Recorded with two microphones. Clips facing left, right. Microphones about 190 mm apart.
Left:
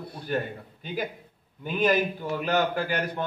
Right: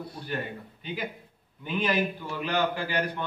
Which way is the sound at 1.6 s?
45° left (ahead or behind).